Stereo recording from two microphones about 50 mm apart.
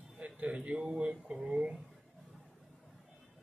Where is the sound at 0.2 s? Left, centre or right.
Right.